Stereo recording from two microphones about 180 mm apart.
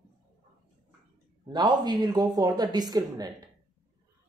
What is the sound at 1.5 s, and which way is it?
Speech, 25° right (ahead or behind).